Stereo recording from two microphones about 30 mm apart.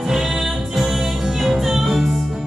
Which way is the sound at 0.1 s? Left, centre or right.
Centre.